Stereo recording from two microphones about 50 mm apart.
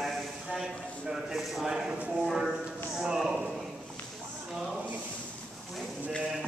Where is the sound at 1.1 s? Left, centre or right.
Centre.